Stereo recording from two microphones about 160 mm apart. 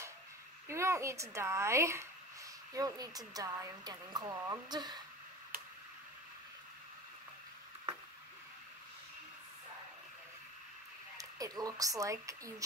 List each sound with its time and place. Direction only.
0.7 s a child's voice: 15° right (ahead or behind)
11.1 s speech: 20° right (ahead or behind)